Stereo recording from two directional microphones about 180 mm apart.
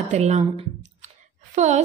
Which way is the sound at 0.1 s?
35° right (ahead or behind).